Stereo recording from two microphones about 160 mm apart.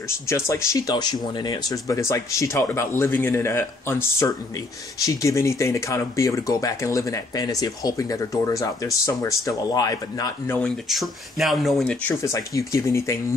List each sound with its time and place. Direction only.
0.3 s speech: 20° left (ahead or behind)
10.9 s speech: centre (ahead or behind); by 13.2 s 20° left (ahead or behind)